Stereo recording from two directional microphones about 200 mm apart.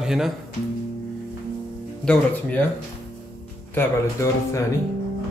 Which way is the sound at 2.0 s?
5° left (ahead or behind).